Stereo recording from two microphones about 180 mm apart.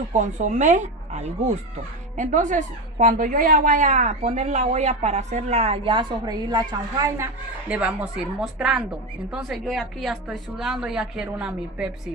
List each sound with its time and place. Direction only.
0.1 s a woman's voice: 40° right (ahead or behind); by 7.2 s 20° right (ahead or behind)
7.6 s a woman's voice: 10° right (ahead or behind)